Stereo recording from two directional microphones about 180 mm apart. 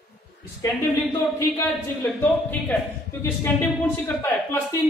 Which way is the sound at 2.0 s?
10° left (ahead or behind).